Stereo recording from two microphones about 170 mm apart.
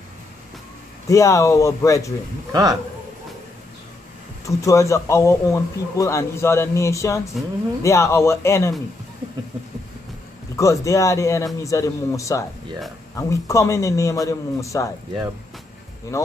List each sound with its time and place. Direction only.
1.0 s speech: 20° left (ahead or behind)
2.5 s a man's voice: 20° right (ahead or behind)
4.5 s speech: 15° left (ahead or behind)
10.5 s speech: 15° left (ahead or behind)